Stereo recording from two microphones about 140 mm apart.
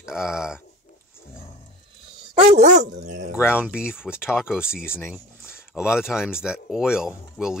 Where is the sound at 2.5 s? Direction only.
60° right (ahead or behind).